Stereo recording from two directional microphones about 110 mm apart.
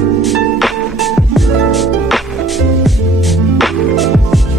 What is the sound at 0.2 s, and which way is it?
Music, centre (ahead or behind).